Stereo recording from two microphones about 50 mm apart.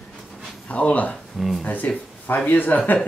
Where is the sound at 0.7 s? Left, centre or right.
Left.